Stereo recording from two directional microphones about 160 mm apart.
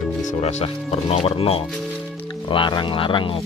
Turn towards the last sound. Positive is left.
turn(degrees=30)  # may be behind; listen again after turning